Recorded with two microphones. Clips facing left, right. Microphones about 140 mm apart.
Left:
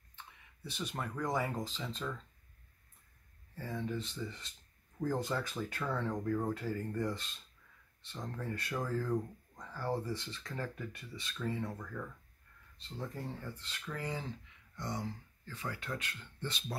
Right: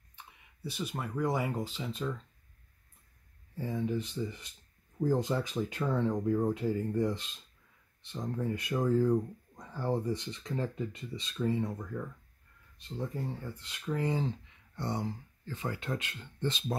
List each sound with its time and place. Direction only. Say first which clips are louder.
0.1 s speech: right 1 dB; 5° right (ahead or behind)
3.5 s speech: right 6 dB; 15° right (ahead or behind)